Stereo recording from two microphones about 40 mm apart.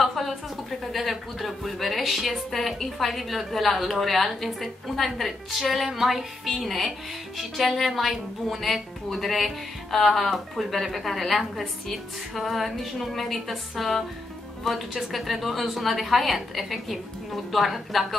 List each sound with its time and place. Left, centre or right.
0.0 s speech: centre